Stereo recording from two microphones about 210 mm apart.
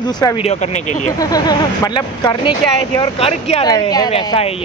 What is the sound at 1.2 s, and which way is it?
Speech, 20° left (ahead or behind).